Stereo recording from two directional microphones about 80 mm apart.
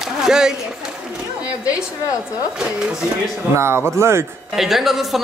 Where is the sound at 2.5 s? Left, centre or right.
Centre.